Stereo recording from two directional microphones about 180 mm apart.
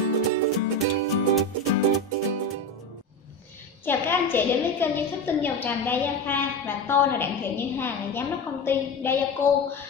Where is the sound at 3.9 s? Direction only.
10° left (ahead or behind).